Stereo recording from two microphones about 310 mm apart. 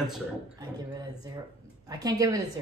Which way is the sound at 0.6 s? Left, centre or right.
Centre.